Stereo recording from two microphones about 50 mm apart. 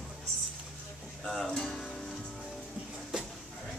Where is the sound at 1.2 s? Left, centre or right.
Centre.